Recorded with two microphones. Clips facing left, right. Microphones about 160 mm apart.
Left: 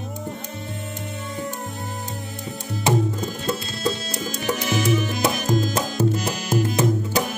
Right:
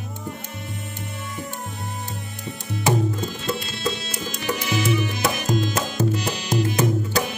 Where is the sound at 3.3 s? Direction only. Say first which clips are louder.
Left 1 dB; 45° left (ahead or behind).